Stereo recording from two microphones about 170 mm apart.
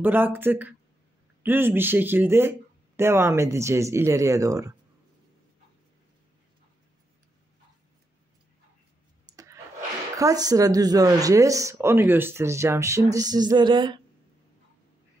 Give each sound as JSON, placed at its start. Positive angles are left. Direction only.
{"t": 0.0, "sound": "speech", "side_deg": -10}
{"t": 9.2, "sound": "a sound", "side_deg": -20}
{"t": 10.1, "sound": "speech", "side_deg": -20}